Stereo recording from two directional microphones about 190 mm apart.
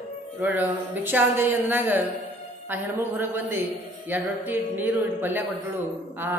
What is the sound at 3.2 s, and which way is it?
Speech, 10° right (ahead or behind).